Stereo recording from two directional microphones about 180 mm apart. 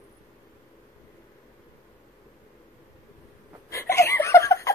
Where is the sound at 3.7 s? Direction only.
15° left (ahead or behind).